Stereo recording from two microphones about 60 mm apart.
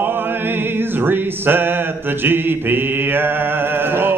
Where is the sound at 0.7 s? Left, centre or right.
Right.